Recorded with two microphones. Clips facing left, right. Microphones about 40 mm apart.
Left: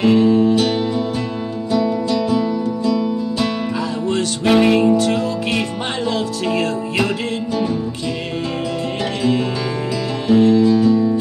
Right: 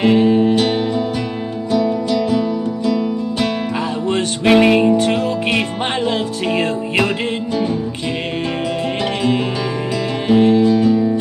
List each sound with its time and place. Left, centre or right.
0.0 s music: right
9.0 s music: right